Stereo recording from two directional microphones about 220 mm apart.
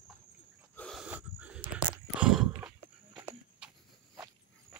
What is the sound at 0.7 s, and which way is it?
Snort, centre (ahead or behind).